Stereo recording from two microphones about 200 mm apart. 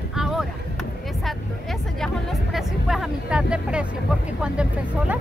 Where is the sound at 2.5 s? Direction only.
Centre (ahead or behind).